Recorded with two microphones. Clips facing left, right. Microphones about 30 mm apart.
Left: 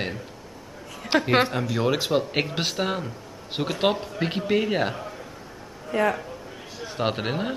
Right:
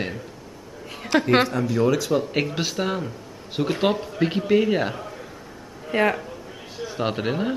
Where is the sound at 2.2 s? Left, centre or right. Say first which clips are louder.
Right 1 dB; centre.